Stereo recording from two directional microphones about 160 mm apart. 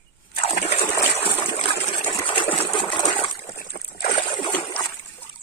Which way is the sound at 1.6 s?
35° left (ahead or behind).